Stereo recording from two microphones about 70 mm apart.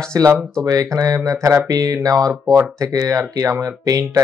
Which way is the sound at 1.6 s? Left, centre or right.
Right.